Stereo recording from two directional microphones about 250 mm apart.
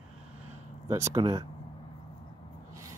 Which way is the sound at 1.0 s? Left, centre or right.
Centre.